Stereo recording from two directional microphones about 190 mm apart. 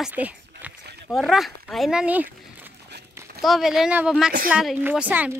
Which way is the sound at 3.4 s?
Centre (ahead or behind).